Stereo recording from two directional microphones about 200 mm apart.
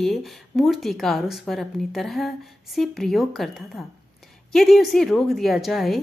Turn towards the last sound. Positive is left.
turn(degrees=0)  # may be behind; listen again after turning